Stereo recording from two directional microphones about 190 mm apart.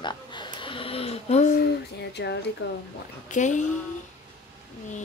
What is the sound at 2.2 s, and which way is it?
Speech, 65° left (ahead or behind).